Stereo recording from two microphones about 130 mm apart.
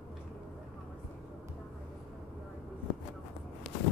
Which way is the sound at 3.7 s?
5° left (ahead or behind).